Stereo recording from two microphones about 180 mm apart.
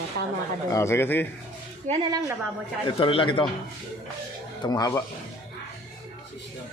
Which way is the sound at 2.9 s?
30° left (ahead or behind).